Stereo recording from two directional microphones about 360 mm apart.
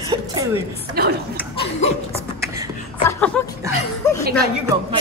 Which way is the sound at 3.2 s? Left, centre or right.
Centre.